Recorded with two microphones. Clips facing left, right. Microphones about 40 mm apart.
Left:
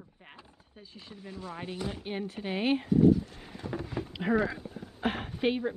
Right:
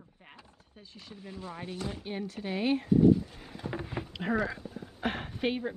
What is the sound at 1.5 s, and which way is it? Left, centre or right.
Speech, centre.